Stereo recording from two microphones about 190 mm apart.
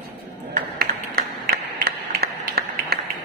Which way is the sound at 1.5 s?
55° right (ahead or behind).